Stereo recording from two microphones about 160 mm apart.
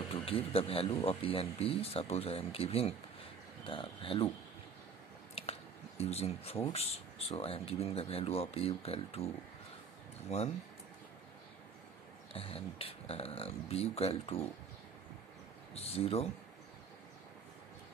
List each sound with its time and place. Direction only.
0.1 s speech: 35° left (ahead or behind)
5.3 s speech: 40° left (ahead or behind)
10.3 s speech: 45° left (ahead or behind)
12.3 s speech: 35° left (ahead or behind)
15.7 s speech: 40° left (ahead or behind)